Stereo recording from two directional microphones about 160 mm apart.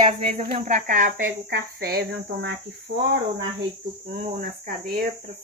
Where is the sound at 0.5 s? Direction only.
45° right (ahead or behind).